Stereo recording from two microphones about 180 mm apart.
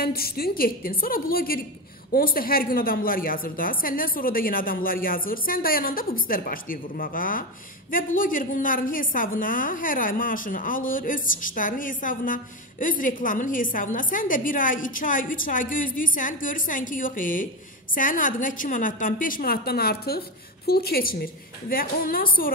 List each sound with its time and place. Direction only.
0.0 s a woman's voice: 55° left (ahead or behind)